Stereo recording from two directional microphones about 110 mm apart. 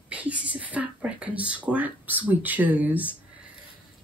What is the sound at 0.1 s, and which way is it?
Speech, 10° right (ahead or behind).